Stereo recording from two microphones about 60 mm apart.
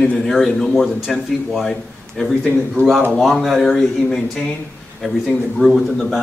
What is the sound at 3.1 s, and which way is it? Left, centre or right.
Speech, centre.